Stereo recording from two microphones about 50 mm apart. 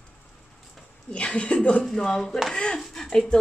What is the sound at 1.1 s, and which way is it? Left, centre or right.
Speech, left.